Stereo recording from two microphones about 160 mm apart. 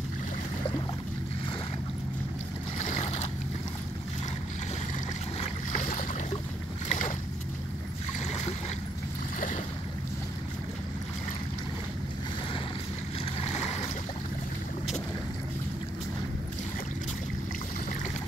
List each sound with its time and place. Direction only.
2.9 s boat: 45° left (ahead or behind)
5.4 s boat: 50° left (ahead or behind)
8.3 s a sound: 45° left (ahead or behind)
13.2 s boat: 40° left (ahead or behind)